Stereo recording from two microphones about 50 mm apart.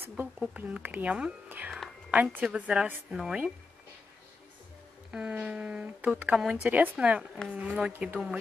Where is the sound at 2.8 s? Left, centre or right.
Centre.